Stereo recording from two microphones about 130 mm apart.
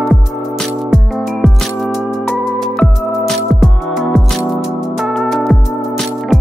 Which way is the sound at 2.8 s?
Centre (ahead or behind).